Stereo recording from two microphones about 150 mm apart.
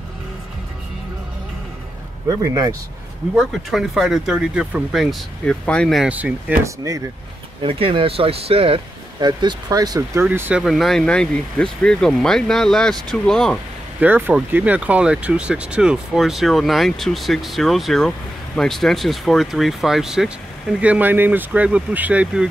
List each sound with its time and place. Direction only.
3.3 s speech: 5° right (ahead or behind)
6.0 s speech: 10° right (ahead or behind)
7.6 s speech: 35° right (ahead or behind)
10.2 s speech: 10° right (ahead or behind)
10.6 s speech: centre (ahead or behind)
13.9 s speech: 10° right (ahead or behind)